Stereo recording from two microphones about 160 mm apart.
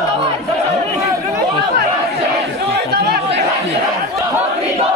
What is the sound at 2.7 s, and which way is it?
Chatter, 90° right.